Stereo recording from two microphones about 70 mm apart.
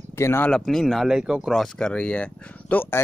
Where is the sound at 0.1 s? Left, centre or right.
Left.